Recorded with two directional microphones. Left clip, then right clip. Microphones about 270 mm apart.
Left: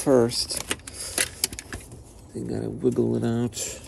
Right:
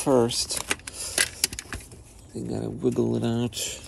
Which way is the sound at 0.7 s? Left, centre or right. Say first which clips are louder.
Right 2 dB; centre.